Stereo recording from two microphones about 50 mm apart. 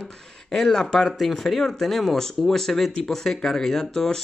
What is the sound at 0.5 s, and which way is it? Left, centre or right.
Speech, centre.